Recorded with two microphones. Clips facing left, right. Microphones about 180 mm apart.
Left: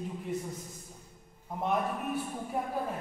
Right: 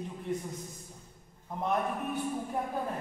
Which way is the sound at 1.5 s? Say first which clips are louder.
Even; centre (ahead or behind).